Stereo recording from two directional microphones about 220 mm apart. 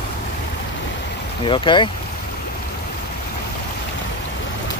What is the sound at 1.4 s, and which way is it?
Speech, 20° left (ahead or behind).